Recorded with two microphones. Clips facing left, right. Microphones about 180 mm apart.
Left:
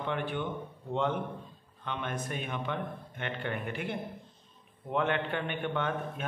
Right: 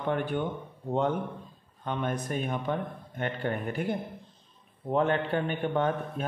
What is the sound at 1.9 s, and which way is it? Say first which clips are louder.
A man's voice: right 5 dB; 40° right (ahead or behind).